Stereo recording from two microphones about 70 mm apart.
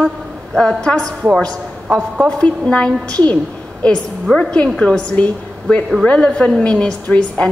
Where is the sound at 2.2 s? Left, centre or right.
Centre.